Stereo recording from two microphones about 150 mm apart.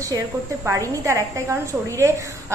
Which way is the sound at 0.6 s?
20° right (ahead or behind).